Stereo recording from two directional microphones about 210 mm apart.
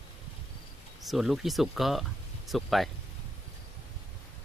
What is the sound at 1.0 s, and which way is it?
Speech, centre (ahead or behind).